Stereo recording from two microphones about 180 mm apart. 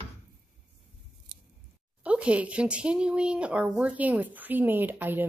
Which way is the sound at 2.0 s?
5° right (ahead or behind).